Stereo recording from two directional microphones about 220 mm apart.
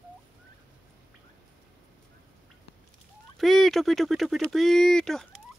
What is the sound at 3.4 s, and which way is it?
Speech, centre (ahead or behind).